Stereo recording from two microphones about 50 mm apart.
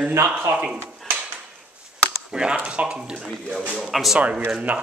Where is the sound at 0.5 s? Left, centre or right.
Right.